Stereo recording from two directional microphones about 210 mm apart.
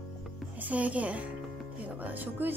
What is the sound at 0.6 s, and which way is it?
Speech, 5° right (ahead or behind).